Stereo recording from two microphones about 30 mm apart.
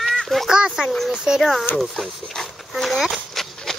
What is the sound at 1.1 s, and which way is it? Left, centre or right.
Speech, right.